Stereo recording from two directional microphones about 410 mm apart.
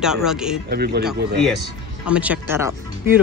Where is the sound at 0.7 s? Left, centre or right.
Right.